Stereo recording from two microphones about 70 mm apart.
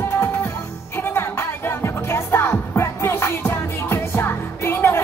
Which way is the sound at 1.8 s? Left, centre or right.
Left.